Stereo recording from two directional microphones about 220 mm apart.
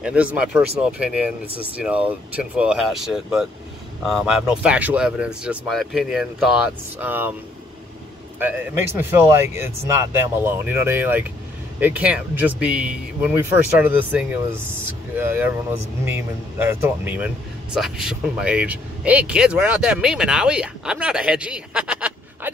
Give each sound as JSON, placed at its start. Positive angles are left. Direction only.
{"t": 0.0, "sound": "speech", "side_deg": -5}
{"t": 8.4, "sound": "speech", "side_deg": -10}